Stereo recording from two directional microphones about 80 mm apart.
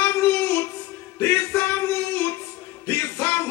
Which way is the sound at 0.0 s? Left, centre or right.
Left.